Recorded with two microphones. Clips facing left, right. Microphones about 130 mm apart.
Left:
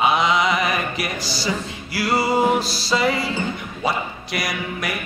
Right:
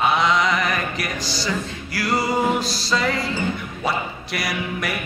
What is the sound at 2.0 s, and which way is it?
Music, 30° left (ahead or behind).